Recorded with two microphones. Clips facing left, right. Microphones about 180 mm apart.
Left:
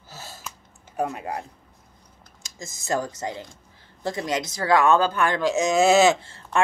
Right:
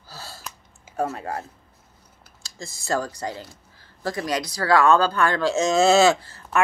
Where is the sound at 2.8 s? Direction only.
20° left (ahead or behind).